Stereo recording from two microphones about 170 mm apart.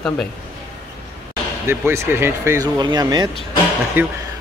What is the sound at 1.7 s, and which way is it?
Speech, 15° right (ahead or behind).